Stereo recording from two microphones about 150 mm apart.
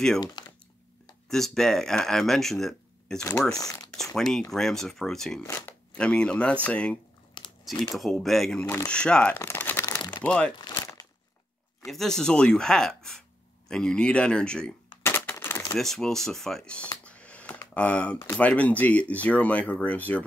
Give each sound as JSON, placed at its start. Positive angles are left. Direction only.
{"t": 0.4, "sound": "typing", "side_deg": 30}
{"t": 1.3, "sound": "speech", "side_deg": 0}
{"t": 3.5, "sound": "speech", "side_deg": 25}
{"t": 3.9, "sound": "speech", "side_deg": 5}
{"t": 5.4, "sound": "speech", "side_deg": 15}
{"t": 7.4, "sound": "crumpling", "side_deg": 30}
{"t": 7.8, "sound": "speech", "side_deg": 0}
{"t": 10.7, "sound": "crumpling", "side_deg": 30}
{"t": 11.8, "sound": "speech", "side_deg": 0}
{"t": 15.0, "sound": "a sound", "side_deg": 15}
{"t": 15.7, "sound": "speech", "side_deg": 5}